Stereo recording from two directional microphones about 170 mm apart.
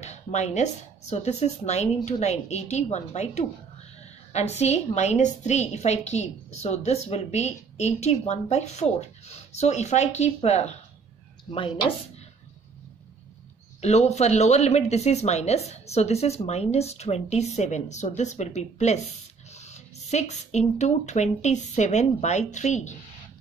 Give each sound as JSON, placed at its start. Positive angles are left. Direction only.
{"t": 0.0, "sound": "a woman's voice", "side_deg": 40}
{"t": 13.7, "sound": "speech", "side_deg": 40}